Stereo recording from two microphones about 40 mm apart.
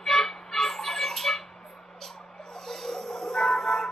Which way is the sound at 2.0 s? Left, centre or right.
Centre.